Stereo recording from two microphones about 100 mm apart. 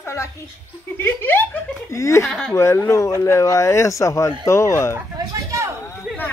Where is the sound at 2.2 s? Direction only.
5° left (ahead or behind).